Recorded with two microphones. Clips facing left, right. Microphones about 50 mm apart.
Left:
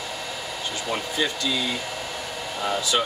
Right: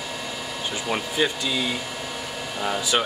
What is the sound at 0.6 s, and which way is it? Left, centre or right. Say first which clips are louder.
Speech: right 2 dB; centre.